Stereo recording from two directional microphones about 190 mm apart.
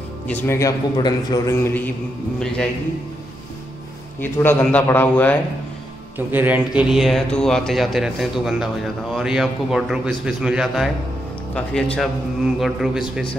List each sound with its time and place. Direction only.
0.3 s a man's voice: 10° left (ahead or behind)
2.4 s speech: 5° left (ahead or behind)
4.2 s a man's voice: 10° left (ahead or behind)
6.1 s speech: 10° right (ahead or behind)